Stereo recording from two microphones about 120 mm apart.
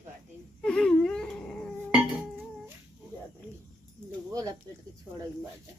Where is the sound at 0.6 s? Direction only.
5° left (ahead or behind).